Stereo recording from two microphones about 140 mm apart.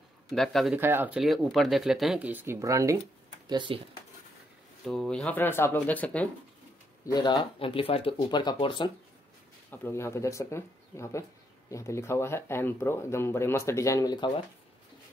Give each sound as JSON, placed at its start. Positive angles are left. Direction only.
{"t": 0.3, "sound": "speech", "side_deg": 0}
{"t": 0.7, "sound": "speech", "side_deg": -15}
{"t": 1.2, "sound": "speech", "side_deg": 0}
{"t": 3.4, "sound": "speech", "side_deg": -35}
{"t": 4.8, "sound": "speech", "side_deg": 5}
{"t": 7.0, "sound": "speech", "side_deg": 20}
{"t": 7.5, "sound": "speech", "side_deg": 40}
{"t": 9.7, "sound": "speech", "side_deg": 15}